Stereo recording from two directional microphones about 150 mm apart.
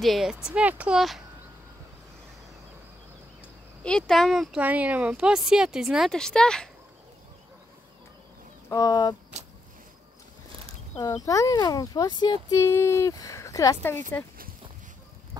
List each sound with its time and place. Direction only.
0.0 s a woman's voice: centre (ahead or behind)
3.8 s a woman's voice: 5° left (ahead or behind)
4.6 s a woman's voice: 10° right (ahead or behind)
8.6 s speech: 25° left (ahead or behind)
11.2 s speech: 25° left (ahead or behind)